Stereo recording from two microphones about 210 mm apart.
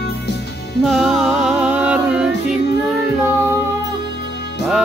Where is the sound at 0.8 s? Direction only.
Centre (ahead or behind).